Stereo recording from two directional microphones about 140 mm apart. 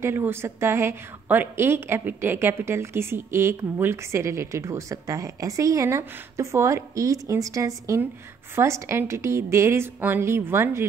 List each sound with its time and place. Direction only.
0.0 s a woman's voice: 15° right (ahead or behind)